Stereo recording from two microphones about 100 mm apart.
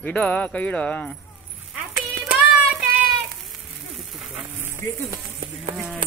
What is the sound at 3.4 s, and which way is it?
Sizzle, centre (ahead or behind).